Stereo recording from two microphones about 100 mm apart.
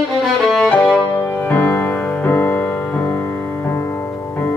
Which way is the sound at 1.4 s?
20° left (ahead or behind).